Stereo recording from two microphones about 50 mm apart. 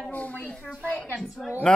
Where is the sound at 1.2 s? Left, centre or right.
Centre.